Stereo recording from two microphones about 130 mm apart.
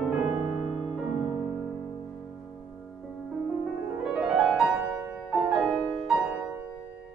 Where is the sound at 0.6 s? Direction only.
60° left (ahead or behind).